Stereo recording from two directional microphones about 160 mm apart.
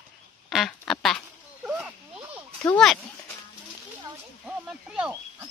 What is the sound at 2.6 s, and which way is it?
Speech, 5° left (ahead or behind).